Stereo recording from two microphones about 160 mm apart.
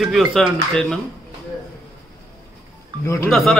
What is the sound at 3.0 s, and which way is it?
Speech, 15° left (ahead or behind).